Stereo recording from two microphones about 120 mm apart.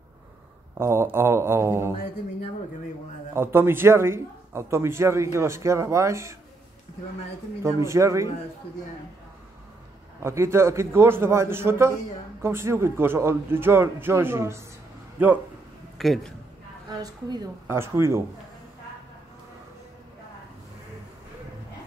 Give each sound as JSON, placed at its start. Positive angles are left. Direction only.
{"t": 0.7, "sound": "a man's voice", "side_deg": -20}
{"t": 3.3, "sound": "a man's voice", "side_deg": -20}
{"t": 7.6, "sound": "a man's voice", "side_deg": -25}
{"t": 10.2, "sound": "a man's voice", "side_deg": -20}
{"t": 16.0, "sound": "a man's voice", "side_deg": 5}
{"t": 17.6, "sound": "a man's voice", "side_deg": -20}